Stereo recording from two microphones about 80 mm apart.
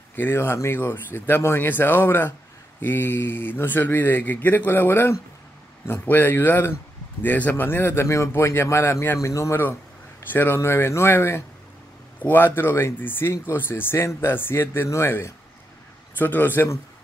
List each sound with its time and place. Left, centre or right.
0.1 s speech: left
10.3 s speech: left
16.2 s speech: left